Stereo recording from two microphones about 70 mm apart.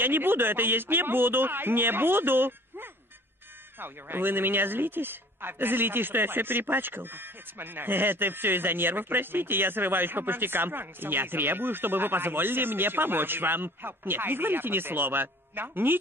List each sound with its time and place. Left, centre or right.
0.0 s speech: right